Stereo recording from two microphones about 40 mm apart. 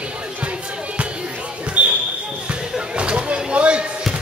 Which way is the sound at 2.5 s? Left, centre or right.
Right.